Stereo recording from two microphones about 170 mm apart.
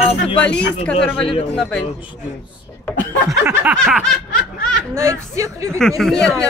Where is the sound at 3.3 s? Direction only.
15° right (ahead or behind).